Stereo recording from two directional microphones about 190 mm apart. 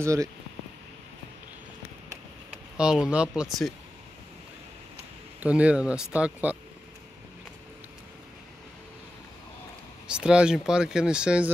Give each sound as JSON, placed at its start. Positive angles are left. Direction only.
{"t": 0.0, "sound": "speech", "side_deg": -15}
{"t": 2.8, "sound": "speech", "side_deg": -5}
{"t": 5.4, "sound": "speech", "side_deg": -5}
{"t": 10.0, "sound": "speech", "side_deg": -5}